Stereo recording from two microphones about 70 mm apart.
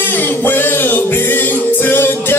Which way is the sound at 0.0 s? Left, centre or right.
Left.